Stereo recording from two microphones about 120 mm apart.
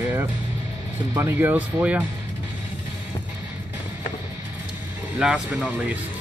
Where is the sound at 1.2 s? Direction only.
20° right (ahead or behind).